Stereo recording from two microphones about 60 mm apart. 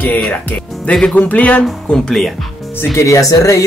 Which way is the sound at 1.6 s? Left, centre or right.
Centre.